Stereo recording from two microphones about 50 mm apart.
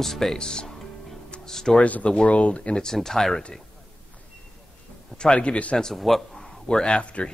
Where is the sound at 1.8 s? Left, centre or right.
Left; by 3.4 s centre.